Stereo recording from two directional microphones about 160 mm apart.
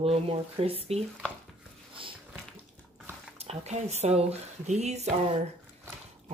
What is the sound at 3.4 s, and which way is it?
Speech, 45° right (ahead or behind).